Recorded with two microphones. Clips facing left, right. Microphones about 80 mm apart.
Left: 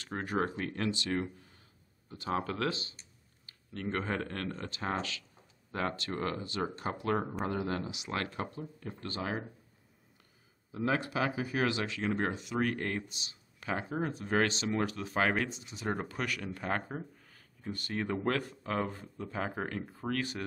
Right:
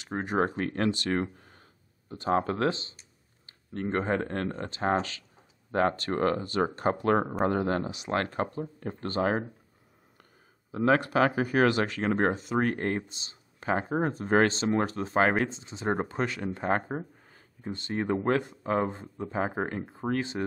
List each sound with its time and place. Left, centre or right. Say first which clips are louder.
0.0 s speech: right 5 dB; right
0.6 s speech: right 6 dB; right
10.7 s speech: right 8 dB; right